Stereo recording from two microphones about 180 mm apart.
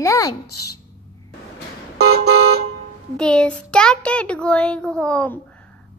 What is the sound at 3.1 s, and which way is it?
Child singing, 5° left (ahead or behind).